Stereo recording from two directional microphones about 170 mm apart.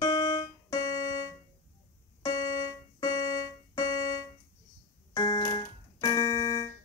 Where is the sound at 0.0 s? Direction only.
25° left (ahead or behind).